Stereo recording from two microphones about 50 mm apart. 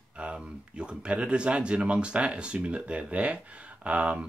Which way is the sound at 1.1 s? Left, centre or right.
Right.